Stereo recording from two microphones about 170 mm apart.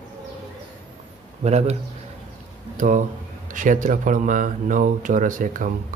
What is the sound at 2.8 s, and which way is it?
Speech, 50° right (ahead or behind).